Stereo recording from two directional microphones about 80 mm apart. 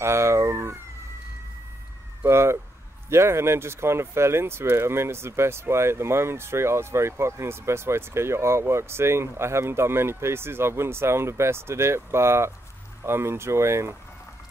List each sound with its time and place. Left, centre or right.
0.0 s police car: right
2.2 s a sound: right
3.1 s speech: right